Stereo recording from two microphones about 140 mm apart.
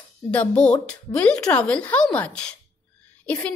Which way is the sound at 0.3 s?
10° left (ahead or behind).